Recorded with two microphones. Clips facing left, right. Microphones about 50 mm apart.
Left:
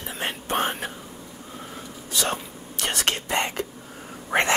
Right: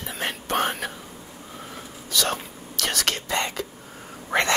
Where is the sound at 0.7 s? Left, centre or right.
Left.